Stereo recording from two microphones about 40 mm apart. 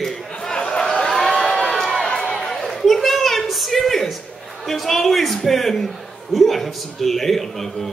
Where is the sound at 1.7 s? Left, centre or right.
Centre.